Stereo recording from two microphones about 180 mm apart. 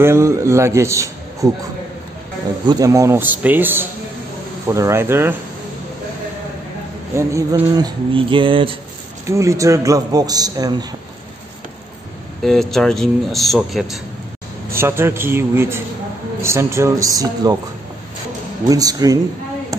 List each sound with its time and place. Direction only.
0.0 s a man's voice: 15° right (ahead or behind)
2.6 s a man's voice: 20° right (ahead or behind)
7.2 s a man's voice: 15° right (ahead or behind)
9.3 s a man's voice: 15° right (ahead or behind)
12.4 s speech: centre (ahead or behind)
14.7 s a man's voice: 15° right (ahead or behind)
18.7 s a man's voice: 20° right (ahead or behind)